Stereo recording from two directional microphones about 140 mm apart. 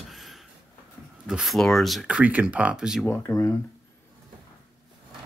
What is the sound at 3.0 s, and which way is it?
Speech, 20° left (ahead or behind).